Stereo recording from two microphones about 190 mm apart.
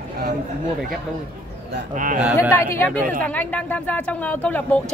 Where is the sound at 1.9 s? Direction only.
45° right (ahead or behind).